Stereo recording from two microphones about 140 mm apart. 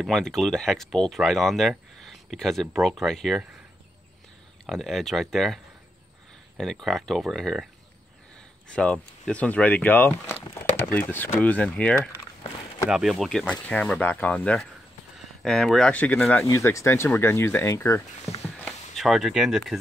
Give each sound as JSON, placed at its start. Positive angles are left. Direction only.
{"t": 0.0, "sound": "speech", "side_deg": 0}
{"t": 4.6, "sound": "speech", "side_deg": 0}
{"t": 6.6, "sound": "speech", "side_deg": 0}
{"t": 8.7, "sound": "speech", "side_deg": 5}
{"t": 12.9, "sound": "speech", "side_deg": 0}
{"t": 16.4, "sound": "speech", "side_deg": 20}
{"t": 18.6, "sound": "speech", "side_deg": 0}